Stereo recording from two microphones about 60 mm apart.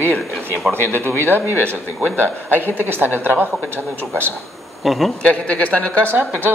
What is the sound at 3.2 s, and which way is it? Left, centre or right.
Speech, right.